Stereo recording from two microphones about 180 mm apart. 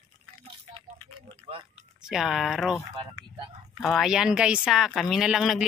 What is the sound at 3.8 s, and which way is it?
A woman's voice, centre (ahead or behind).